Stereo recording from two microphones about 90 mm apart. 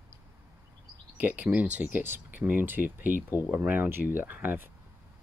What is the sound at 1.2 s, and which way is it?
Speech, 15° right (ahead or behind).